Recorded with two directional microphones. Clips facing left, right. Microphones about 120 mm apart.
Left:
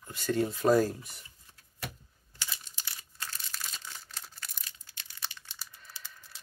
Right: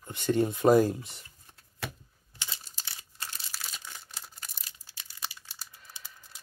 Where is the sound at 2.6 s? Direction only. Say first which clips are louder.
Right 1 dB; 35° right (ahead or behind).